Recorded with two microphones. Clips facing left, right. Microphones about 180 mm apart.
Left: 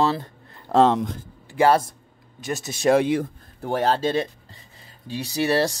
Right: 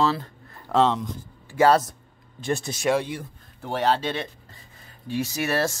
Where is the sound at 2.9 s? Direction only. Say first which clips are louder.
Left 7 dB; 90° left.